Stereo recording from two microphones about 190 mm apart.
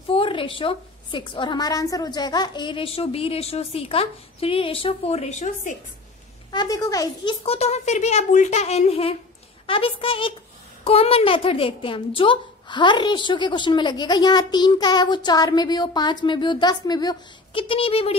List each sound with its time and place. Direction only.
0.1 s a woman's voice: 30° left (ahead or behind)
6.5 s a woman's voice: 20° left (ahead or behind)
7.4 s a woman's voice: 35° left (ahead or behind)